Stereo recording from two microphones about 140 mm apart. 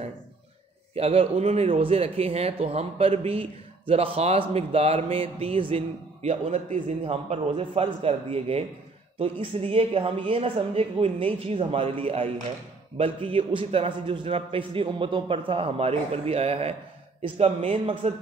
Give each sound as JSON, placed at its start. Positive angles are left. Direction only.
{"t": 0.9, "sound": "speech", "side_deg": -45}
{"t": 6.5, "sound": "a man's voice", "side_deg": -60}
{"t": 7.1, "sound": "a man's voice", "side_deg": -45}